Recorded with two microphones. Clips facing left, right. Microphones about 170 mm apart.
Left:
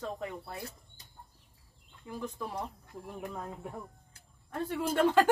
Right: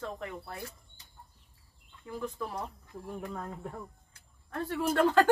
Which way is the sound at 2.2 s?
20° left (ahead or behind).